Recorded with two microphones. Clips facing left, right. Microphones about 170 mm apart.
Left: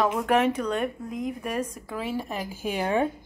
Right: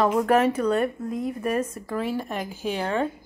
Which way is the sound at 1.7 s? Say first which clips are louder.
Right 3 dB; centre (ahead or behind).